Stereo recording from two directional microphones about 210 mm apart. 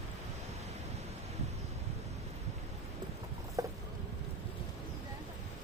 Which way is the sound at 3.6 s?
15° right (ahead or behind).